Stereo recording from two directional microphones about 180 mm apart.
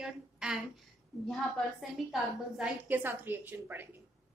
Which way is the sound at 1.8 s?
Centre (ahead or behind).